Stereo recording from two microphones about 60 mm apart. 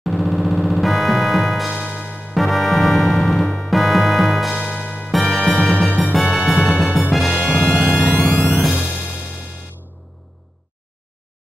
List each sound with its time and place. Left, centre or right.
0.0 s music: centre
2.3 s music: centre
5.3 s music: centre
6.1 s music: centre
7.3 s music: centre
8.5 s music: centre
8.7 s music: centre